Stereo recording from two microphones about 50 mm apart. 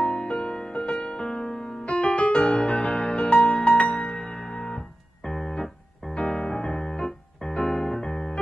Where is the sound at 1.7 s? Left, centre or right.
Left.